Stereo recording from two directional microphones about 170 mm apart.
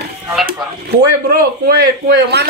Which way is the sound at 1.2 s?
65° right (ahead or behind).